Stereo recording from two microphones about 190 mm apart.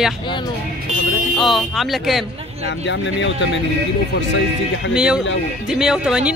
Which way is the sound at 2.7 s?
70° left (ahead or behind).